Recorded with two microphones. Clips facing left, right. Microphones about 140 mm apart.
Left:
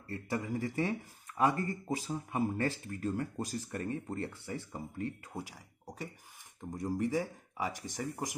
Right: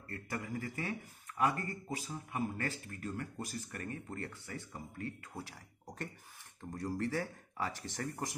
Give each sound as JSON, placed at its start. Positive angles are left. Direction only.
{"t": 0.1, "sound": "speech", "side_deg": 20}
{"t": 1.9, "sound": "speech", "side_deg": 35}
{"t": 5.4, "sound": "speech", "side_deg": 10}